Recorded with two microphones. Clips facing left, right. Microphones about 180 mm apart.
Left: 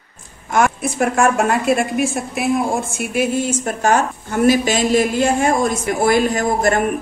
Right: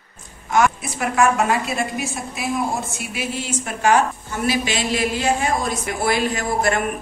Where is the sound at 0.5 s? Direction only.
50° left (ahead or behind).